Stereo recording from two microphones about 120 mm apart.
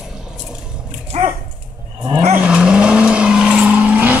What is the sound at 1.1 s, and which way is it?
Dog, 65° right (ahead or behind).